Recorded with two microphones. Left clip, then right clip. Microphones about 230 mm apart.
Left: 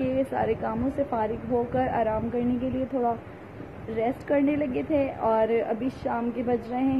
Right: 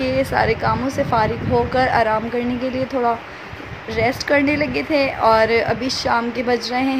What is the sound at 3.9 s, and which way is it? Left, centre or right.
A woman's voice, centre.